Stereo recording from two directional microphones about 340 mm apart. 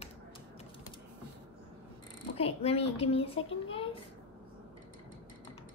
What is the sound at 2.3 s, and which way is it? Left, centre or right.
A woman's voice, centre.